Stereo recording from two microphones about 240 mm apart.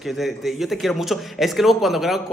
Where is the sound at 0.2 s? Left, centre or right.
Centre.